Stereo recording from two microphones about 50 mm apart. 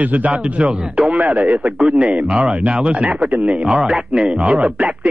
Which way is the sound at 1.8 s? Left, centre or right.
Centre.